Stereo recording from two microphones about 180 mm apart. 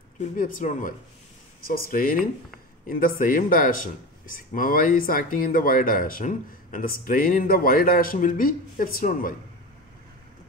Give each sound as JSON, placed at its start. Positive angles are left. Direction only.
{"t": 0.4, "sound": "speech", "side_deg": 45}